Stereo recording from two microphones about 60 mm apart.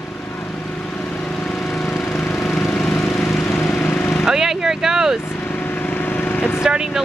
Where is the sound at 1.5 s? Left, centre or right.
Centre.